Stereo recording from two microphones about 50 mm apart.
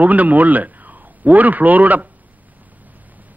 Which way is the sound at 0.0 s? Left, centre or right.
Right.